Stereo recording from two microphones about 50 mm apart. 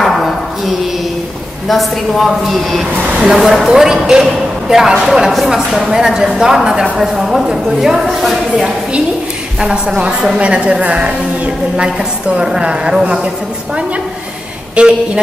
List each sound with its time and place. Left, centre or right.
0.0 s a sound: centre
1.7 s a woman's voice: centre
9.6 s a woman's voice: centre
14.8 s a woman's voice: right